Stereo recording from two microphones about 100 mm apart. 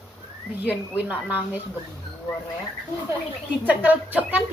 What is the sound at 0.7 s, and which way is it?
Speech, 15° right (ahead or behind).